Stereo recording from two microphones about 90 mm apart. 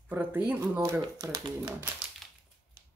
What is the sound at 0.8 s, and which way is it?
Speech, 35° right (ahead or behind).